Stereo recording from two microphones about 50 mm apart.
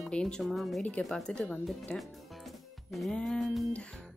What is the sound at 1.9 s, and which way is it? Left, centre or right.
Speech, left.